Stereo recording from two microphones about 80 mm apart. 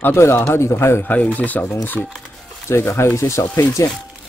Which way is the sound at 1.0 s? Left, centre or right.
Centre.